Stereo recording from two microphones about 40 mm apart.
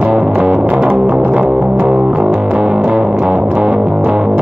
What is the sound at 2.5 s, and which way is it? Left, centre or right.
Music, right.